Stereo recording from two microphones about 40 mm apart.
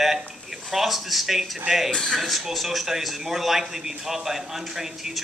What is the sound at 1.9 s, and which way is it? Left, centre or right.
Speech, centre.